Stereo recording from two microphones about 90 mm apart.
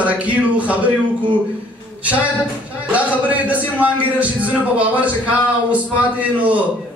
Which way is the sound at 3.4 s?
15° right (ahead or behind).